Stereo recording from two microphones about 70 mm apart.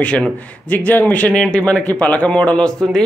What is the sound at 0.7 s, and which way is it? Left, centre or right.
Speech, left.